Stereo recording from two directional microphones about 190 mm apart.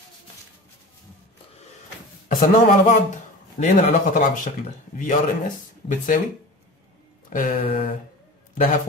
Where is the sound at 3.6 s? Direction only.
45° left (ahead or behind).